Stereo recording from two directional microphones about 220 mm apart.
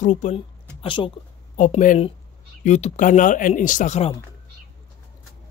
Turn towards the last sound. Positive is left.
turn(degrees=30)  # may be behind; listen again after turning